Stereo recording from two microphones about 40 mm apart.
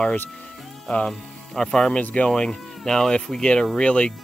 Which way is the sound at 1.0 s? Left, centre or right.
Centre.